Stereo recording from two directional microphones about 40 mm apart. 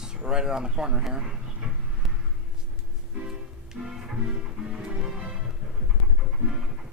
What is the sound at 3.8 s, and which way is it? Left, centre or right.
Music, right.